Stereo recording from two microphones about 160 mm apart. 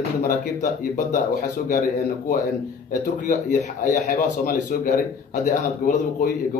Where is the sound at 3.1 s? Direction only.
50° left (ahead or behind).